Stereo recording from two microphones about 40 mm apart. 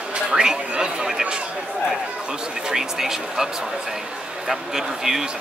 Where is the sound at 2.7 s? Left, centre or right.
Centre.